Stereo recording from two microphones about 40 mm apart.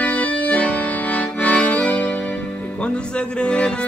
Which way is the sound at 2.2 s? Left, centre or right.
Left.